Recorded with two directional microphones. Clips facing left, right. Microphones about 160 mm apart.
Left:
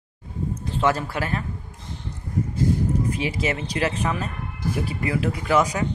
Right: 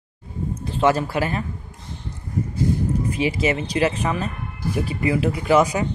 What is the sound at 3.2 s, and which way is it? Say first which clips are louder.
Speech: right 4 dB; 5° right (ahead or behind).